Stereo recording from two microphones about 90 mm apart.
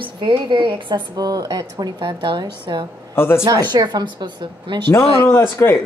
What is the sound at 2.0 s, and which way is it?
Speech, 65° right (ahead or behind).